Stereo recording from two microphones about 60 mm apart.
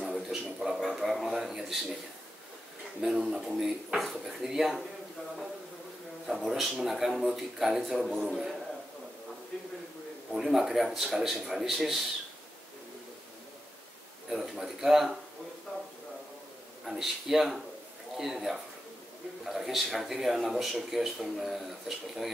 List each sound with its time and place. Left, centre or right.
0.0 s a sound: centre
3.0 s speech: centre
6.2 s speech: centre
10.3 s speech: centre
14.3 s speech: centre
16.8 s speech: centre